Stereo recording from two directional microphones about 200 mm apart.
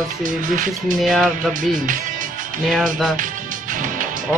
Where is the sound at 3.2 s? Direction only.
40° right (ahead or behind).